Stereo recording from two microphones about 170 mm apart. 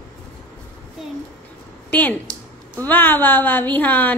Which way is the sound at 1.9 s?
10° left (ahead or behind).